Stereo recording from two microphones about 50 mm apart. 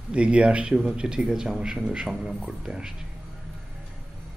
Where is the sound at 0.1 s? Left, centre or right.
Right.